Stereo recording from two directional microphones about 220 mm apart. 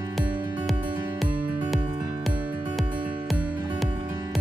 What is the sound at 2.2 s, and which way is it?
Music, centre (ahead or behind).